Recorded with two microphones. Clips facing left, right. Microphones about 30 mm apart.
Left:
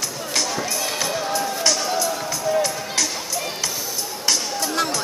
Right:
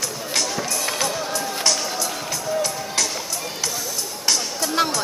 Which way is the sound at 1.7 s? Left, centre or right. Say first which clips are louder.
Left 2 dB; centre.